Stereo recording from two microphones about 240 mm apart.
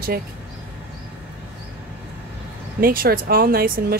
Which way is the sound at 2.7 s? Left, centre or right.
Right.